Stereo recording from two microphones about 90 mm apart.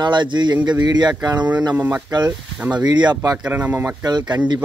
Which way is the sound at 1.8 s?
20° right (ahead or behind).